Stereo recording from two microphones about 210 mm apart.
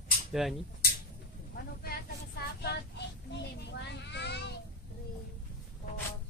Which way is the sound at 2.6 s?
55° left (ahead or behind).